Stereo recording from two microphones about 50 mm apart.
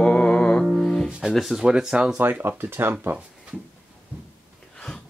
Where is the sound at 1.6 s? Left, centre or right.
Centre.